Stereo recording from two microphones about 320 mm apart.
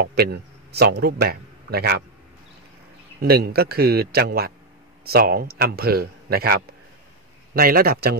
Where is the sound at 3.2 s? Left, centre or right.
Right.